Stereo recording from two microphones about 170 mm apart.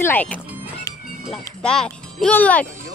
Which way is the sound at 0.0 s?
10° left (ahead or behind).